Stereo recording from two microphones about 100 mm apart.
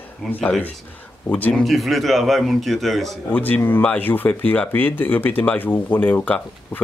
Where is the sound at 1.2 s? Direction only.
15° left (ahead or behind).